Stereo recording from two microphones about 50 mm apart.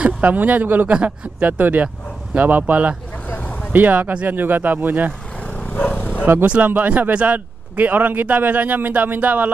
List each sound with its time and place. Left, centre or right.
0.0 s speech: right
0.9 s a man's voice: right
3.3 s vehicle: left
3.7 s a man's voice: right
5.9 s bow-wow: left
6.4 s a man's voice: right